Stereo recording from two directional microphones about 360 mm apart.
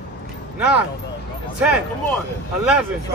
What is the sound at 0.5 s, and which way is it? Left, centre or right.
Speech, centre.